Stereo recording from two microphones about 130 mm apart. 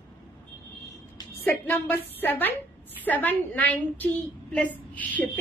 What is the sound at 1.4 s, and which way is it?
A woman's voice, 15° left (ahead or behind).